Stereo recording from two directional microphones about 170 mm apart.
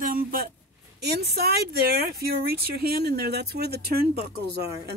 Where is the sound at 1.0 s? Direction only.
70° right (ahead or behind).